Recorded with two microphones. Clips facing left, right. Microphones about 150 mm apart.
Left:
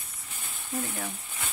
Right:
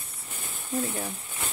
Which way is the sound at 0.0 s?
30° right (ahead or behind).